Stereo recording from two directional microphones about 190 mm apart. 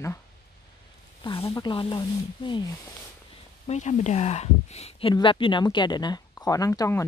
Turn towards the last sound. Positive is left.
turn(degrees=15)  # may be behind; listen again after turning